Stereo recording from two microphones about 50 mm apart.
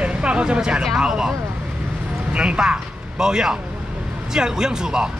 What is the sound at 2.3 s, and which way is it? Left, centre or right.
Speech, centre.